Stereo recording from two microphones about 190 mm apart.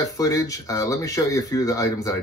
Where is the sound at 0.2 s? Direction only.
20° left (ahead or behind).